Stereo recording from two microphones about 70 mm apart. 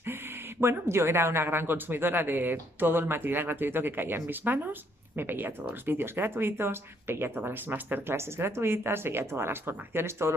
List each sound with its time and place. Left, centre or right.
0.0 s speech: right